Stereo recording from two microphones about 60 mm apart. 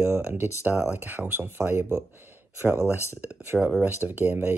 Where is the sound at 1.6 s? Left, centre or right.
Right.